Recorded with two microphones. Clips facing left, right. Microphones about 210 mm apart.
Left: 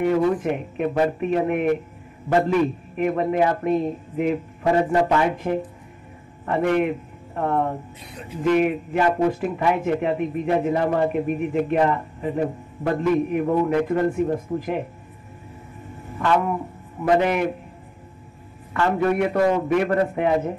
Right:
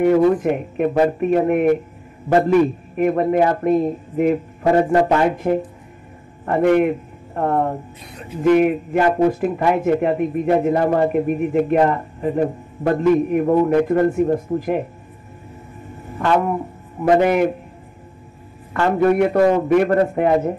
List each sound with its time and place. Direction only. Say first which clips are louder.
0.0 s speech: right 5 dB; 50° right (ahead or behind)
3.0 s speech: right 4 dB; 45° right (ahead or behind)
16.2 s speech: right 3 dB; 45° right (ahead or behind)
18.7 s speech: right 5 dB; 40° right (ahead or behind)